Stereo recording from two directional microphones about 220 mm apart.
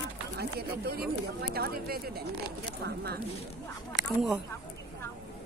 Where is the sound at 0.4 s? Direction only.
45° right (ahead or behind).